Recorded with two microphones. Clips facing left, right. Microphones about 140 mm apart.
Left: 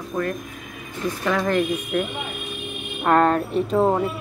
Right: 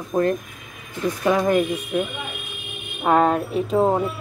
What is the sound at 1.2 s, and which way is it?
Speech, 15° right (ahead or behind).